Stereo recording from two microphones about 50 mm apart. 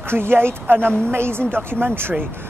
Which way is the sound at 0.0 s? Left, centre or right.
Right.